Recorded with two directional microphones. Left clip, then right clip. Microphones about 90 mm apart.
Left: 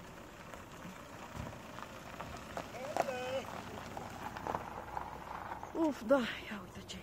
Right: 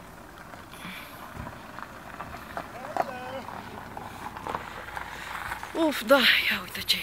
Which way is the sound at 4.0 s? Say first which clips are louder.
Right 6 dB; 5° right (ahead or behind).